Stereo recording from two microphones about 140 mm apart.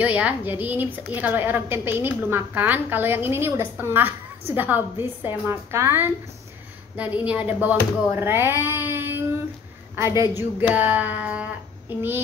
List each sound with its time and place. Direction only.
0.0 s a woman's voice: 10° right (ahead or behind)
11.9 s child singing: 15° right (ahead or behind)